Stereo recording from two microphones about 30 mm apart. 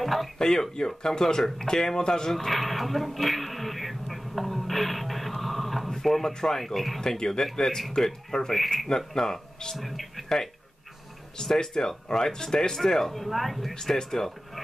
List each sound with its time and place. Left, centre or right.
0.0 s a sound: centre
0.4 s speech: centre
2.3 s throat clearing: centre
6.0 s speech: centre
7.0 s speech: left
9.8 s speech: centre
10.2 s speech: centre
13.7 s speech: centre